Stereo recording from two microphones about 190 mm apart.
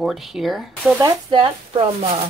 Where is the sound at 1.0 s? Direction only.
25° right (ahead or behind).